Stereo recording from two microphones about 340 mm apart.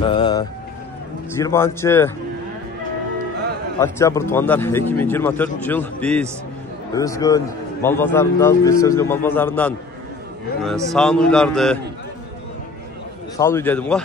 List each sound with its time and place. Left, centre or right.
0.0 s a sound: centre
1.4 s a man's voice: centre
3.8 s a man's voice: centre
13.4 s speech: centre